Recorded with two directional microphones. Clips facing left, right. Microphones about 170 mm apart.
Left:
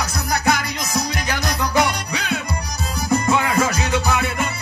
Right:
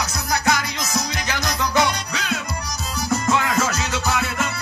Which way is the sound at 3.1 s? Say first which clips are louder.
Left 2 dB; 10° left (ahead or behind).